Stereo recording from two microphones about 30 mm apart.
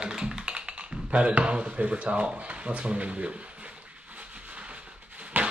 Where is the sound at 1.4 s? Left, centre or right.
Right.